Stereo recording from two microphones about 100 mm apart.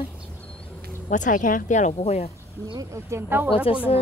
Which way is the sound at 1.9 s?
90° left.